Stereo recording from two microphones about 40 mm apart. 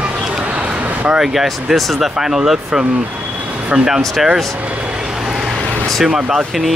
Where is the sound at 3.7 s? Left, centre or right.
Right.